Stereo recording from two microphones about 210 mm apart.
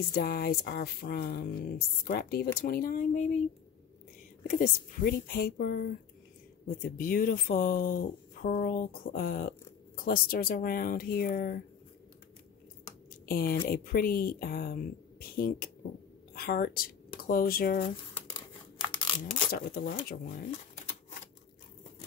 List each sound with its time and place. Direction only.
0.1 s speech: 45° left (ahead or behind)
13.2 s speech: 45° left (ahead or behind)
18.8 s a sound: 25° left (ahead or behind)
19.2 s speech: 25° left (ahead or behind)
19.5 s speech: 45° left (ahead or behind)